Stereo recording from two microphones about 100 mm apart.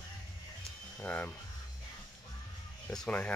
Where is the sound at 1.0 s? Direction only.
15° left (ahead or behind).